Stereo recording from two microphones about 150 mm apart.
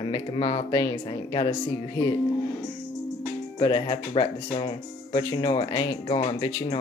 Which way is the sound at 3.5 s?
30° left (ahead or behind).